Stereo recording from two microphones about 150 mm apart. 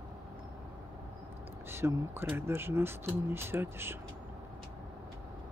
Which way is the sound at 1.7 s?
15° right (ahead or behind).